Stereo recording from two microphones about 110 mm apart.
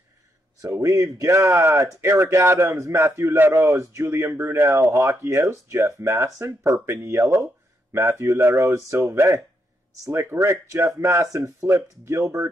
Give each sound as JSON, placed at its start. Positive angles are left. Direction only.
{"t": 0.6, "sound": "speech", "side_deg": -30}